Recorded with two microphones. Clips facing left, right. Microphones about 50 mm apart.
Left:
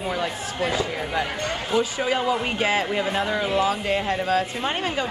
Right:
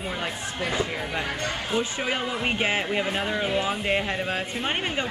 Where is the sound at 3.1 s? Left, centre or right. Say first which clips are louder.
Left 3 dB; centre.